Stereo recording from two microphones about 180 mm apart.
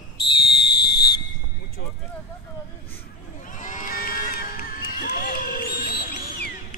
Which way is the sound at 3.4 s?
45° left (ahead or behind).